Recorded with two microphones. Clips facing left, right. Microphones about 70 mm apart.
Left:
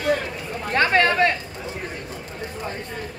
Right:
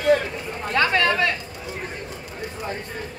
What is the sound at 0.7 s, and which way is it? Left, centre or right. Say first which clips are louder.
Speech: left 2 dB; left.